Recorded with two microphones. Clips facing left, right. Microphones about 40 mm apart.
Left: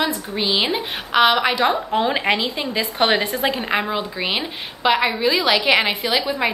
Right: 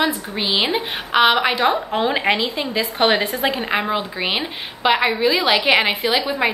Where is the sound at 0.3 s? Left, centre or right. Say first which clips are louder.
Even; centre.